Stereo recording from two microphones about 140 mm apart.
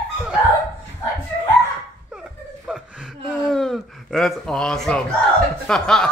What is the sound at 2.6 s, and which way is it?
Chuckle, 5° right (ahead or behind).